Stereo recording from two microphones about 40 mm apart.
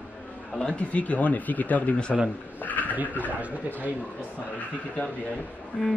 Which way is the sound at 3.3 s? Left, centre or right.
Right.